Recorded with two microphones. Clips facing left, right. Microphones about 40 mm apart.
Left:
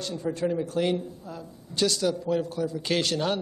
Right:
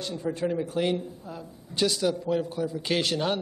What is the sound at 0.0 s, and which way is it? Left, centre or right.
A man's voice, centre.